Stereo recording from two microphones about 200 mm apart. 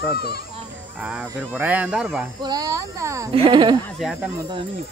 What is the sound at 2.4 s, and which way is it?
Speech, 20° right (ahead or behind).